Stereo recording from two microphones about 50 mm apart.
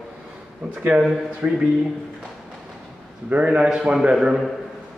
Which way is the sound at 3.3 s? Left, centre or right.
Right.